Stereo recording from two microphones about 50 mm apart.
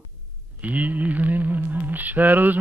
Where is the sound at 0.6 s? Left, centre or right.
Right.